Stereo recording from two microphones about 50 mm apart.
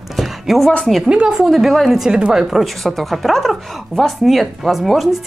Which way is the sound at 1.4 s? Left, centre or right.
Centre.